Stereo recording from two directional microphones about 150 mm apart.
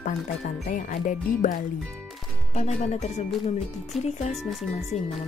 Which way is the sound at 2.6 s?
45° left (ahead or behind).